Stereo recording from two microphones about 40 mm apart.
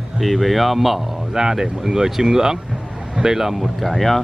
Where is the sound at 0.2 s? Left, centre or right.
Centre.